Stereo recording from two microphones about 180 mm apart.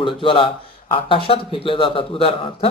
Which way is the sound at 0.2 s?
30° left (ahead or behind).